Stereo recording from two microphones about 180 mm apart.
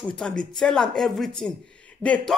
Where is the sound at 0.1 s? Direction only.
5° left (ahead or behind).